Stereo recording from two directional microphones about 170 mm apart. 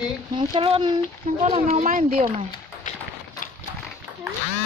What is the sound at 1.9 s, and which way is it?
Speech, 55° right (ahead or behind).